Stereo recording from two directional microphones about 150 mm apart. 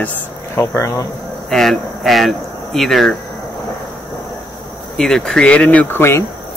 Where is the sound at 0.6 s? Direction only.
20° left (ahead or behind).